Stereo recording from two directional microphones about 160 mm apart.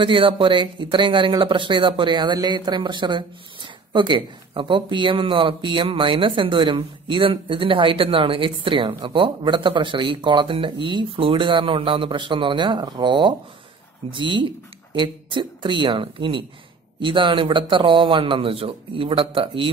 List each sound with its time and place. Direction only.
0.0 s speech: 35° right (ahead or behind)